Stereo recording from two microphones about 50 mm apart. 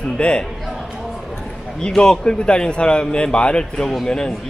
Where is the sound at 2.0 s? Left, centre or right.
Centre.